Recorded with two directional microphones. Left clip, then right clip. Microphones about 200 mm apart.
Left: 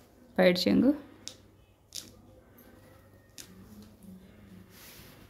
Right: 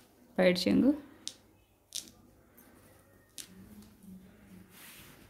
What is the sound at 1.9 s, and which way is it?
Biting, 25° right (ahead or behind).